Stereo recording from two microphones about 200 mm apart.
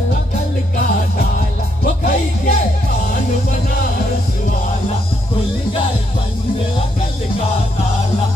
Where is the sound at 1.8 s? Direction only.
45° left (ahead or behind).